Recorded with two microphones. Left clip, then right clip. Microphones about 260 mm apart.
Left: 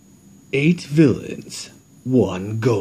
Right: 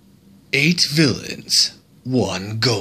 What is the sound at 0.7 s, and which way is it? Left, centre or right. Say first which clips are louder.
Speech: even; centre.